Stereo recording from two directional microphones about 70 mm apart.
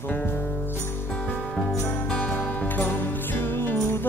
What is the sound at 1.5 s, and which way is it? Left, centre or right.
Music, centre.